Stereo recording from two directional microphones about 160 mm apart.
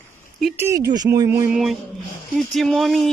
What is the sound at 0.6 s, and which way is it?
Speech, 20° right (ahead or behind).